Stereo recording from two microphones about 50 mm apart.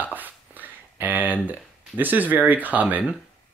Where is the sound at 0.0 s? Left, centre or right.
Right.